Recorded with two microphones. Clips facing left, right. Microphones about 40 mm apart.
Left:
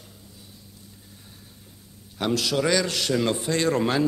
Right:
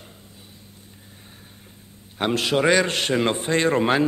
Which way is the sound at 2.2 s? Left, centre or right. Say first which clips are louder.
Right 3 dB; right.